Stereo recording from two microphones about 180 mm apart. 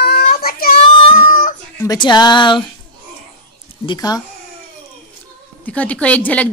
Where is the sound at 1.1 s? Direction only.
50° left (ahead or behind).